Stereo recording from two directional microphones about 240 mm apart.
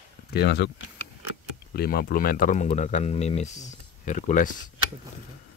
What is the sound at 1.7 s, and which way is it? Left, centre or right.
Speech, left.